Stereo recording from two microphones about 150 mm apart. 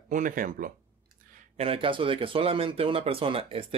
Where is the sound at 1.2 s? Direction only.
65° right (ahead or behind).